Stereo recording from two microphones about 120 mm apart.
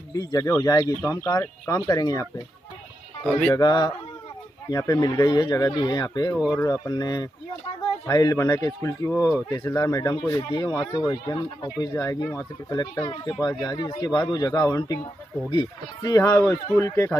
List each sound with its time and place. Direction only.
0.1 s speech: 30° left (ahead or behind)
3.5 s speech: 35° left (ahead or behind)
6.3 s speech: 5° right (ahead or behind)
6.6 s speech: 30° left (ahead or behind)
11.3 s speech: 40° left (ahead or behind)
11.9 s speech: 30° left (ahead or behind)